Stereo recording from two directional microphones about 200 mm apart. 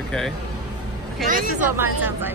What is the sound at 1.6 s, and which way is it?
Speech, 10° right (ahead or behind).